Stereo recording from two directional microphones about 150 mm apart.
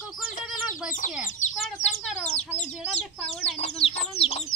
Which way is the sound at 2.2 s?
45° left (ahead or behind).